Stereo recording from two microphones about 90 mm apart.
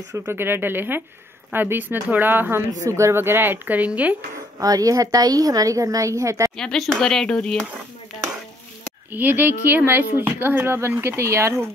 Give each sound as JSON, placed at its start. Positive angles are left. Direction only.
{"t": 0.3, "sound": "a woman's voice", "side_deg": -25}
{"t": 2.7, "sound": "a woman's voice", "side_deg": -35}
{"t": 4.6, "sound": "a woman's voice", "side_deg": -40}
{"t": 6.5, "sound": "speech", "side_deg": 5}
{"t": 9.1, "sound": "a woman's voice", "side_deg": -20}